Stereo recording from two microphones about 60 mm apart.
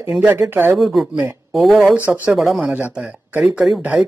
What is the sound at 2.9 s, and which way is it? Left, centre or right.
Speech, centre.